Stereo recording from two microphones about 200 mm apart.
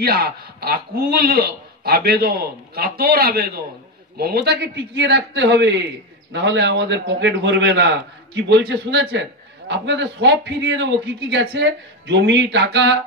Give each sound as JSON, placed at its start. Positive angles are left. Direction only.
{"t": 0.0, "sound": "a man's voice", "side_deg": -50}